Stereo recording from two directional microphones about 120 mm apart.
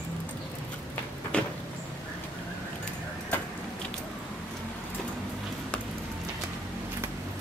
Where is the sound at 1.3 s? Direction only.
10° left (ahead or behind).